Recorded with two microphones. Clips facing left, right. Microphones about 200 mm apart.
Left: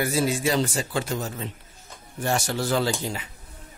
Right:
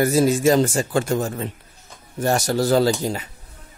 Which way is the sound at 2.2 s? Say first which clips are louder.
Right 6 dB; 40° right (ahead or behind).